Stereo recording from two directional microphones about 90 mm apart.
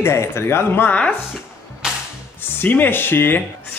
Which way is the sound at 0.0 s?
25° left (ahead or behind).